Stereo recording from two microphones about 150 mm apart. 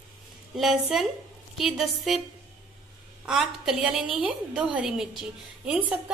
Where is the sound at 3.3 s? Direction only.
5° right (ahead or behind).